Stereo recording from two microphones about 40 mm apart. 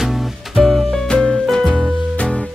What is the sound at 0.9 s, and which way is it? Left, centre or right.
Music, centre.